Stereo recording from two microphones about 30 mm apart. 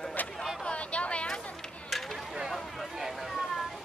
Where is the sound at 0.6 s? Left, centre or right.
Left.